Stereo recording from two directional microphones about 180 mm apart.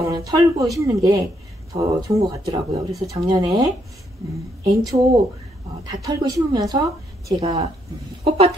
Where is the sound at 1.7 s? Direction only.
35° right (ahead or behind).